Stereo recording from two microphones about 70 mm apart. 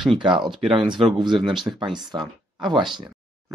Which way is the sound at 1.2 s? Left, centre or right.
Right.